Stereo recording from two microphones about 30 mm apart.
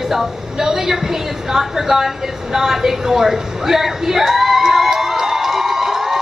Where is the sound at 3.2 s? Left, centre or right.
Centre.